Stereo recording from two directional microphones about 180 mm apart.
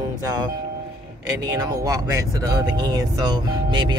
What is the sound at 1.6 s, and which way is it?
Speech, 20° right (ahead or behind).